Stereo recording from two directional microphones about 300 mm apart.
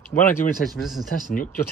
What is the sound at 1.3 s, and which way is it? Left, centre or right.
Speech, left.